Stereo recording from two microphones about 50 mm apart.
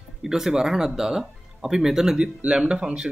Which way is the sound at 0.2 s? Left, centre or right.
Centre.